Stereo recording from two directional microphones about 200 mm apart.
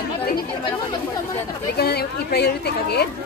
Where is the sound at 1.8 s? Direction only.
50° left (ahead or behind).